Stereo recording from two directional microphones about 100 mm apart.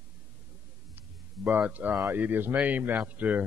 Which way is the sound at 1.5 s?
15° right (ahead or behind).